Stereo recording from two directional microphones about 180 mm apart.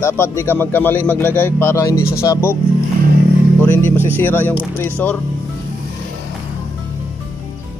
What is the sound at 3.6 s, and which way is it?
Speech, 10° left (ahead or behind).